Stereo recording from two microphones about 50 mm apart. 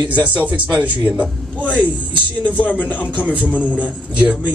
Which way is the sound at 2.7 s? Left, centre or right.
Left.